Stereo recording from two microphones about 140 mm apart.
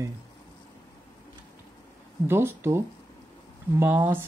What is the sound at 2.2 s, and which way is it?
Speech, 15° right (ahead or behind).